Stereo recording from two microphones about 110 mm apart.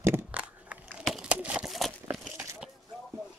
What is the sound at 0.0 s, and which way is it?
Crushing, 20° right (ahead or behind).